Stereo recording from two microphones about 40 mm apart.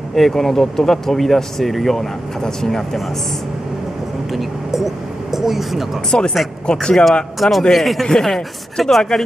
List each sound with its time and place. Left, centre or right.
0.1 s speech: centre
4.3 s speech: centre
6.1 s speech: left
7.3 s speech: centre